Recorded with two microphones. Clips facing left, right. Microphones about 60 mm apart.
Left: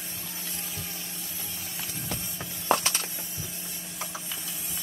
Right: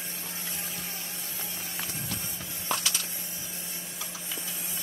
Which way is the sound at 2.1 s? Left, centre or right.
Left.